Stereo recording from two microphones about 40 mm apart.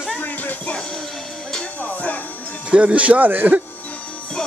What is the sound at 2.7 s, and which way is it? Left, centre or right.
Speech, right.